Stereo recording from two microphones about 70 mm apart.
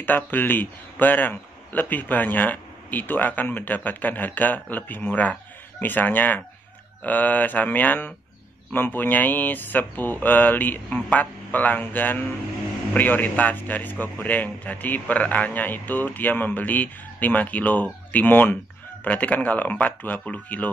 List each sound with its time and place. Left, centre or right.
0.0 s speech: left